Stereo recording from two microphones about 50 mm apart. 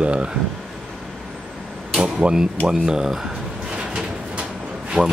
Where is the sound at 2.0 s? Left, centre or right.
Centre.